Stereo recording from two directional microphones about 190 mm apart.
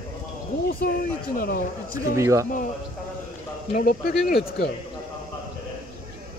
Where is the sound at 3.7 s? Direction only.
50° left (ahead or behind).